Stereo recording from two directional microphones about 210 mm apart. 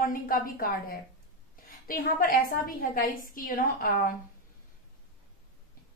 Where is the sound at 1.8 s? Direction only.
45° left (ahead or behind).